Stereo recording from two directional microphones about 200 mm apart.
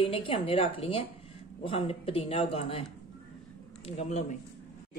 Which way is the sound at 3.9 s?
30° left (ahead or behind).